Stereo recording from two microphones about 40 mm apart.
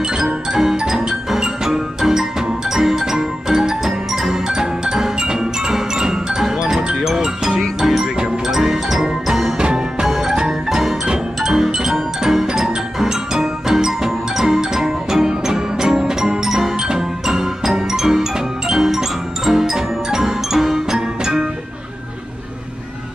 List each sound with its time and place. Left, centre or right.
0.2 s music: centre
8.5 s jingle: centre
9.6 s music: right